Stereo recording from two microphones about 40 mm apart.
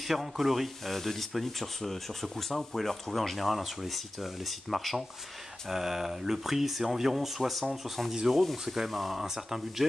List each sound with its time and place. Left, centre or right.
0.0 s speech: centre
0.9 s speech: centre